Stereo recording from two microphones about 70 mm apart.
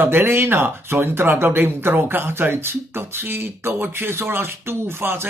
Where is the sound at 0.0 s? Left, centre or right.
Right.